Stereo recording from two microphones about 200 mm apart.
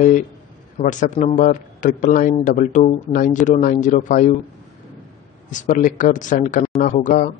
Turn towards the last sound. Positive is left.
turn(degrees=40)  # may be behind; listen again after turning